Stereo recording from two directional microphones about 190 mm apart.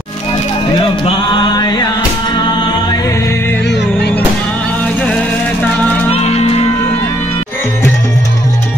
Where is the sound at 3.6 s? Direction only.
65° left (ahead or behind).